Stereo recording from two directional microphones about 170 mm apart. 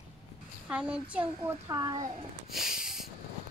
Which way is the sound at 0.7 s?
5° right (ahead or behind).